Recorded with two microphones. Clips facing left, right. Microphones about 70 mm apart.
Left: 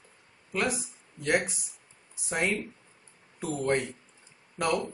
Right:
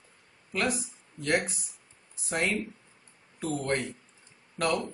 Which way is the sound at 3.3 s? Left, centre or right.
Centre.